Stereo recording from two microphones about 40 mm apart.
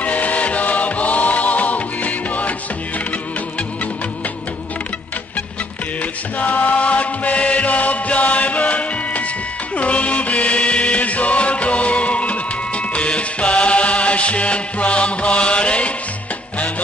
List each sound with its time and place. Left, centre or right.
0.0 s music: left
6.4 s music: left